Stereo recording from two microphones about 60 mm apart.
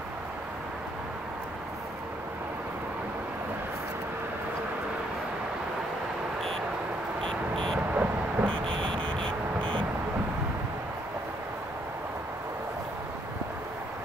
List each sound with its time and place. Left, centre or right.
7.2 s vehicle: centre
7.9 s vehicle: right
8.5 s vehicle: centre